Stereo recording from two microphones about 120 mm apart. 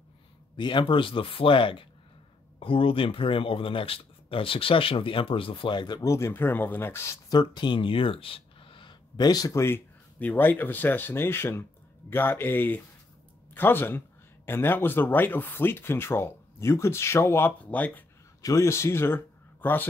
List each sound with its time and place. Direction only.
0.6 s speech: 40° left (ahead or behind)
6.0 s speech: 25° left (ahead or behind)
7.3 s speech: 40° left (ahead or behind); by 18.0 s 15° left (ahead or behind)
18.4 s speech: 25° left (ahead or behind)